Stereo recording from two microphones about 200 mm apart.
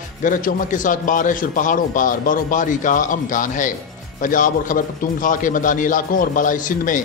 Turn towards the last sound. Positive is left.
turn(degrees=40)  # may be behind; listen again after turning